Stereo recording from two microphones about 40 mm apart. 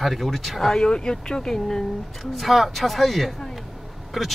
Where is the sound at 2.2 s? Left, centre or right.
Centre.